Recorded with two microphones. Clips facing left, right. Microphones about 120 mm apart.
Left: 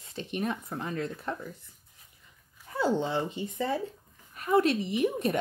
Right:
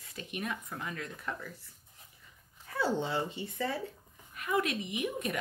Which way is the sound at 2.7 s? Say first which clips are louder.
Left 4 dB; 20° left (ahead or behind).